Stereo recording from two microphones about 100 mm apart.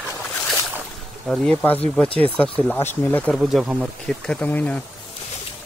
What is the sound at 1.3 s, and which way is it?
Speech, 5° left (ahead or behind).